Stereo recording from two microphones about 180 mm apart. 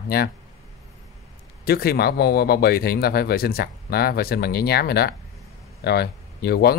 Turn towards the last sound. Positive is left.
turn(degrees=60)  # may be behind; listen again after turning